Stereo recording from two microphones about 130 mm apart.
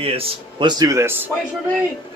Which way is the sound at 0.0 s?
45° right (ahead or behind).